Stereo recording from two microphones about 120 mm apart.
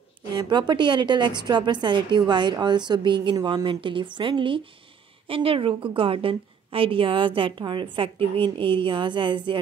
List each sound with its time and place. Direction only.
0.3 s a woman's voice: 35° right (ahead or behind)